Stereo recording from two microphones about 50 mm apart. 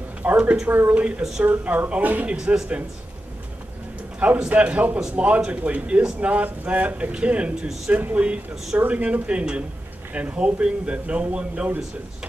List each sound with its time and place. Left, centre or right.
0.2 s a sound: right
0.8 s speech: right
2.3 s speech: centre
4.5 s speech: right
7.6 s speech: centre
8.0 s speech: right